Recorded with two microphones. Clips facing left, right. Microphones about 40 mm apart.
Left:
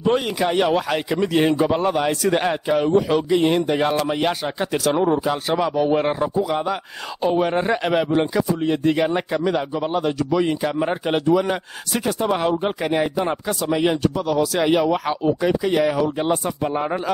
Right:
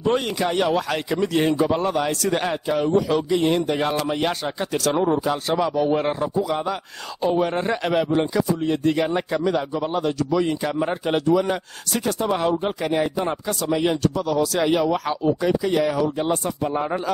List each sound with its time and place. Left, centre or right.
0.0 s speech: centre; by 16.9 s left